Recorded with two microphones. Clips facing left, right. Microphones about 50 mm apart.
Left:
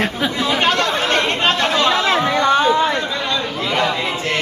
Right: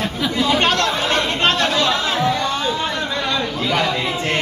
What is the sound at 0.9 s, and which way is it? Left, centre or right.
Chatter, left.